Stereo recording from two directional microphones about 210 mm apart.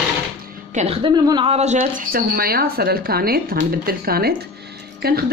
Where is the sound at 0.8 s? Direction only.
30° right (ahead or behind).